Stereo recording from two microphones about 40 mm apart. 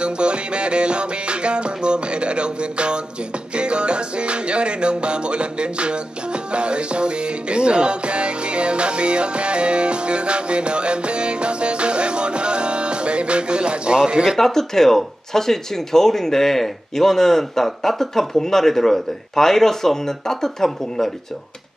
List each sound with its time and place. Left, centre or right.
0.0 s music: right
14.4 s speech: centre